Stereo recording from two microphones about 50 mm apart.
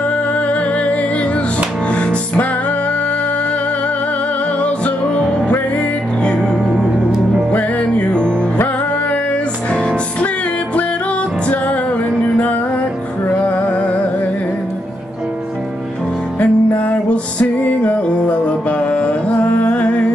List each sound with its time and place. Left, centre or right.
0.5 s music: left
4.6 s music: left
6.7 s music: centre
7.5 s music: left
9.7 s music: left
11.4 s music: left
13.4 s music: left
16.3 s music: left